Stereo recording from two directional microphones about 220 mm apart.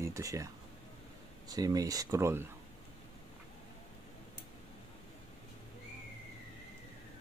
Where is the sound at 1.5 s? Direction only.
15° right (ahead or behind).